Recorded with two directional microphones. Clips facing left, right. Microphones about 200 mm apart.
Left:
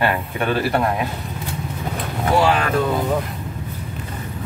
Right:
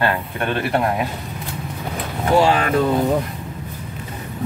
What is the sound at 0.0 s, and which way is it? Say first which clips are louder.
Speech: left 1 dB; 5° left (ahead or behind).